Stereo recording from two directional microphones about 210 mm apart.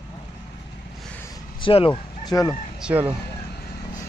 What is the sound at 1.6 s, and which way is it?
Fowl, 25° left (ahead or behind).